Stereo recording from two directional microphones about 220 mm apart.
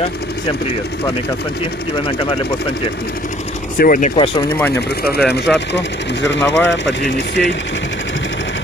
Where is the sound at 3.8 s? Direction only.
40° left (ahead or behind); by 6.4 s 55° left (ahead or behind).